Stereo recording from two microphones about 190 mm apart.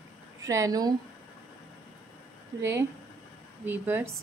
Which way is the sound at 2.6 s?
15° right (ahead or behind).